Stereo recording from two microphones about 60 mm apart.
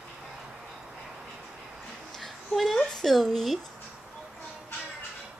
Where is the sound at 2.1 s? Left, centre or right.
Centre.